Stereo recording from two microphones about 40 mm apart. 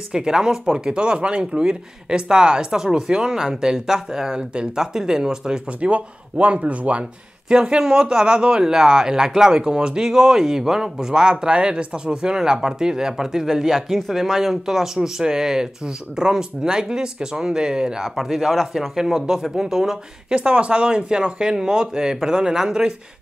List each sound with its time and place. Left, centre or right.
0.1 s speech: centre
5.7 s speech: right
18.1 s speech: centre
20.3 s speech: right